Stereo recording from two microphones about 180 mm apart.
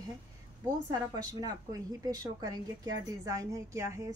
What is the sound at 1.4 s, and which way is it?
Speech, 20° right (ahead or behind).